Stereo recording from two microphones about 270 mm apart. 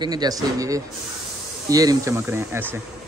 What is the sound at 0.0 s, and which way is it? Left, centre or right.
A man's voice, centre.